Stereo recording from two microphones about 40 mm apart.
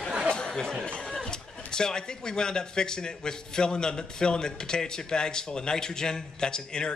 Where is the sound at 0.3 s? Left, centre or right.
Left.